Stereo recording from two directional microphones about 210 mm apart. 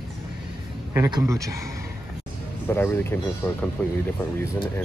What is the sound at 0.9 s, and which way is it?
Speech, 15° right (ahead or behind).